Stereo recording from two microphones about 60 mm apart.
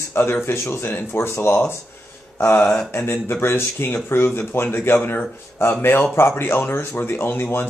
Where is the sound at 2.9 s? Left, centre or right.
Left.